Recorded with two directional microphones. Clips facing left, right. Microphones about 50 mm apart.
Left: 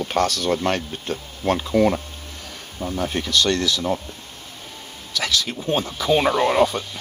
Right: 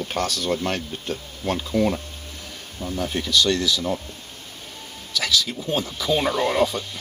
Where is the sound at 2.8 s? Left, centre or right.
Left.